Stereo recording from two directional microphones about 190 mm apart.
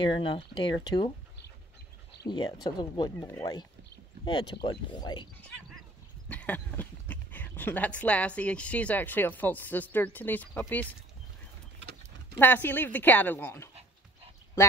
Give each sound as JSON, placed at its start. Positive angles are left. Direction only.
{"t": 0.0, "sound": "speech", "side_deg": 25}
{"t": 2.2, "sound": "speech", "side_deg": 20}
{"t": 6.2, "sound": "a woman's voice", "side_deg": 10}
{"t": 12.4, "sound": "a woman's voice", "side_deg": 10}